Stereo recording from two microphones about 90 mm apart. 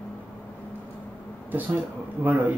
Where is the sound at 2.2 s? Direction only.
20° right (ahead or behind).